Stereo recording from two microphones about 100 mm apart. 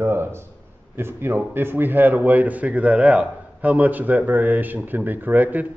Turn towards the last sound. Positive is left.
turn(degrees=-15)  # may be behind; listen again after turning